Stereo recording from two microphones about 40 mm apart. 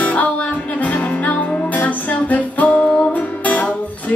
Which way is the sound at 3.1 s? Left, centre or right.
Left.